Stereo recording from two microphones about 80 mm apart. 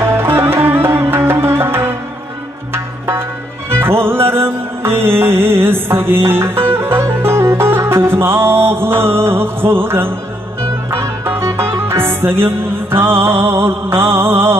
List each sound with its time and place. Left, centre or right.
0.0 s music: right